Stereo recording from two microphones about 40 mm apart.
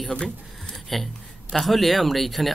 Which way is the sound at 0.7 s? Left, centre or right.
Centre.